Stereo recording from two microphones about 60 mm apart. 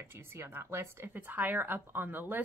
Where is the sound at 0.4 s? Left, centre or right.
Right.